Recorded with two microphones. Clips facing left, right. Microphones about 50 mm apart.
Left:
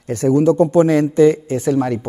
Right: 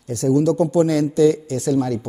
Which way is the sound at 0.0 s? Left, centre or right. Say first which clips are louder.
Left 3 dB; left.